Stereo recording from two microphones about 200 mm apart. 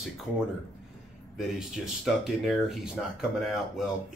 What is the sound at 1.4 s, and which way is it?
Speech, centre (ahead or behind).